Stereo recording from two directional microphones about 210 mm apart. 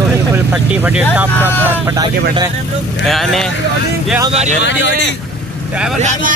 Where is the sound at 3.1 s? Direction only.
Centre (ahead or behind).